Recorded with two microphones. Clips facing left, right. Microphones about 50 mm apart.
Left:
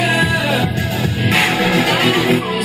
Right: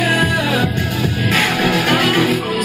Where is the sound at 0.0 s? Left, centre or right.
Left.